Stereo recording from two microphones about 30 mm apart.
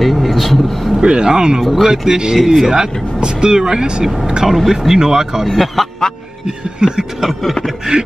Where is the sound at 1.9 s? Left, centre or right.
Right.